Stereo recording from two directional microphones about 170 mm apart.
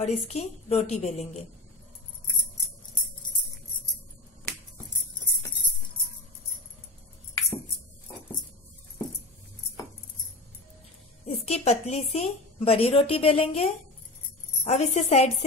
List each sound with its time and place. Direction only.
0.0 s a woman's voice: 40° left (ahead or behind)
11.2 s a woman's voice: 35° left (ahead or behind)